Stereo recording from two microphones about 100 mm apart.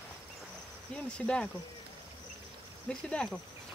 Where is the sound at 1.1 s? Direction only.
10° left (ahead or behind).